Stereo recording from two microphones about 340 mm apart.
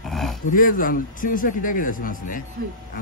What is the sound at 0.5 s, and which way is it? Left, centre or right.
A man's voice, left.